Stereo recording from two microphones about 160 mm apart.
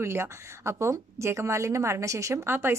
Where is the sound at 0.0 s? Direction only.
15° right (ahead or behind).